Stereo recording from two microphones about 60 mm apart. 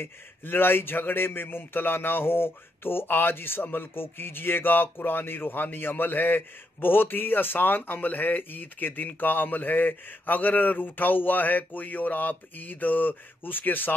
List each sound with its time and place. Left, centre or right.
0.0 s a man's voice: left